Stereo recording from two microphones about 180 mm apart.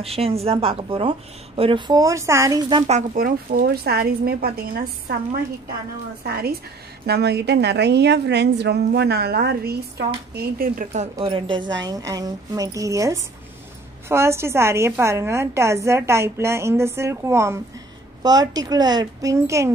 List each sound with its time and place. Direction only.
0.0 s a woman's voice: 35° right (ahead or behind); by 2.8 s 20° right (ahead or behind)
2.9 s a woman's voice: 45° right (ahead or behind)
11.1 s a woman's voice: 30° right (ahead or behind)